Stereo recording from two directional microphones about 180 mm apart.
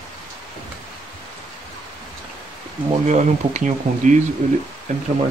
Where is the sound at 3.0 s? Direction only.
40° right (ahead or behind).